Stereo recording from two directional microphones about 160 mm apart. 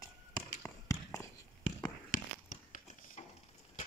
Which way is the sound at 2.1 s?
55° left (ahead or behind).